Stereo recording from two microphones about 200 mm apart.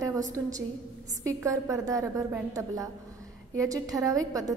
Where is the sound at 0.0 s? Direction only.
15° right (ahead or behind).